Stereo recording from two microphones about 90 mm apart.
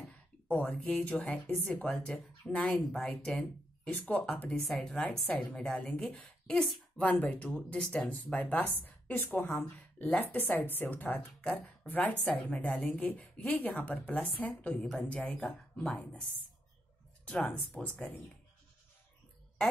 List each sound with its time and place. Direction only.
0.5 s a woman's voice: 15° left (ahead or behind)
4.6 s speech: centre (ahead or behind)
5.2 s a woman's voice: 15° left (ahead or behind)